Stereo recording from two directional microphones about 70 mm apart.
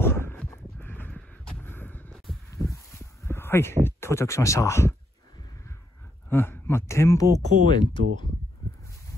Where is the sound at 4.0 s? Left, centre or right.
Left.